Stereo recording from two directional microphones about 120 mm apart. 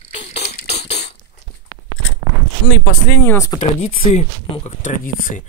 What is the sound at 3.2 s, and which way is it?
Speech, 25° left (ahead or behind).